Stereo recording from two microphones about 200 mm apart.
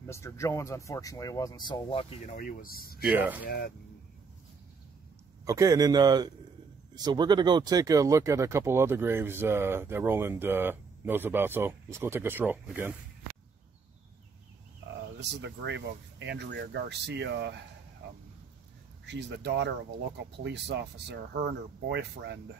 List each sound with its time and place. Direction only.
0.0 s speech: 15° left (ahead or behind)
2.2 s speech: 40° left (ahead or behind)
3.2 s speech: 10° right (ahead or behind)
3.4 s speech: 45° left (ahead or behind)
5.4 s a man's voice: 15° right (ahead or behind)
15.1 s speech: 60° right (ahead or behind)
19.0 s speech: 60° right (ahead or behind)